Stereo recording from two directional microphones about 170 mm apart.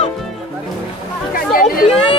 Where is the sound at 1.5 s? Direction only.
55° left (ahead or behind).